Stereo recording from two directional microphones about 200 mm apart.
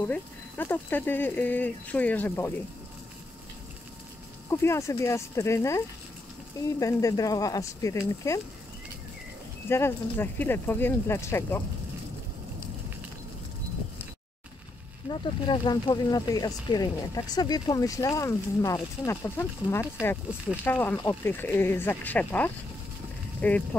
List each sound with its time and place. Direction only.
0.0 s speech: 10° left (ahead or behind)
4.5 s speech: 15° left (ahead or behind)
9.7 s speech: 10° left (ahead or behind)
15.0 s speech: 20° left (ahead or behind)